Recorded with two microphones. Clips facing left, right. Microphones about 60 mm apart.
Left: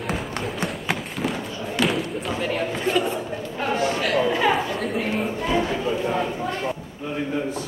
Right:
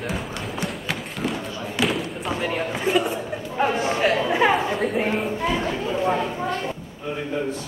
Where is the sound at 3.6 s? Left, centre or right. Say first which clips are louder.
Right 3 dB; right.